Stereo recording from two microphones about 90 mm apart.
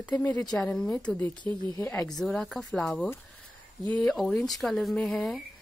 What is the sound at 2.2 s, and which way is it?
Speech, 5° left (ahead or behind).